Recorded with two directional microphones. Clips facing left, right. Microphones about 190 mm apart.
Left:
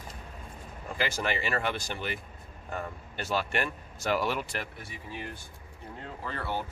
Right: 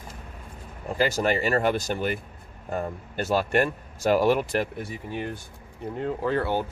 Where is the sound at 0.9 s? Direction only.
40° right (ahead or behind).